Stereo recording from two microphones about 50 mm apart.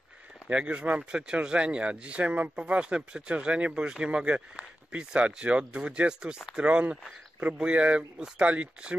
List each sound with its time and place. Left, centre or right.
0.5 s speech: right